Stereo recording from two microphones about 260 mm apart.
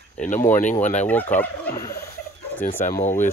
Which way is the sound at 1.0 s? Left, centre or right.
Centre.